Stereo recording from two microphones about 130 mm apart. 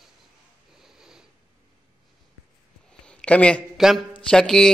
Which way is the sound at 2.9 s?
5° left (ahead or behind).